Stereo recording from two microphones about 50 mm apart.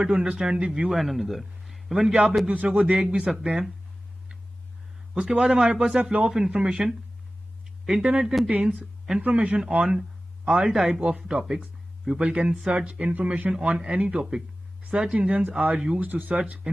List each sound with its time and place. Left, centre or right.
0.0 s a man's voice: centre
2.4 s speech: right
5.1 s a man's voice: centre
9.3 s speech: right
9.8 s a sound: centre
10.6 s a man's voice: centre
12.2 s a man's voice: right
16.0 s speech: right